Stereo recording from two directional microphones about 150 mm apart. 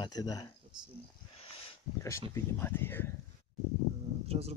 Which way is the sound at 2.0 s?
20° left (ahead or behind).